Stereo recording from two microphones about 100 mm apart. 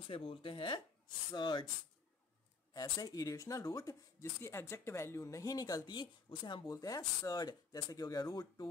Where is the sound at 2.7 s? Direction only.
40° left (ahead or behind).